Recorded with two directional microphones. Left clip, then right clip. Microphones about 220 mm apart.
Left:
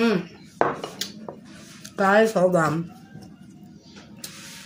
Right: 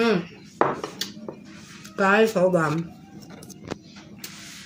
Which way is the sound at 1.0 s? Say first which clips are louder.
Even; centre (ahead or behind).